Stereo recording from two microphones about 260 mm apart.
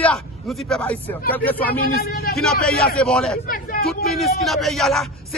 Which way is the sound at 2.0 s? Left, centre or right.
Left.